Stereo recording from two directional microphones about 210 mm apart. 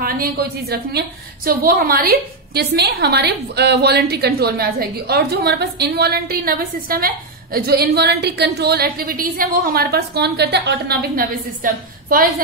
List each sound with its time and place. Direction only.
0.0 s a woman's voice: 45° right (ahead or behind)